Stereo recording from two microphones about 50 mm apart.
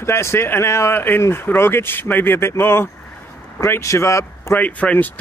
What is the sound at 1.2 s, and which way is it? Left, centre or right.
Speech, left.